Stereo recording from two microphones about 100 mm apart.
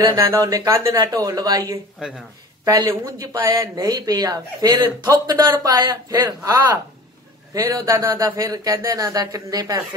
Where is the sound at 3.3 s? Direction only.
35° right (ahead or behind).